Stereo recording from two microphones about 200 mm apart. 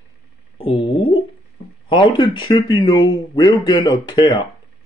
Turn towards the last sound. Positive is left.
turn(degrees=20)  # may be behind; listen again after turning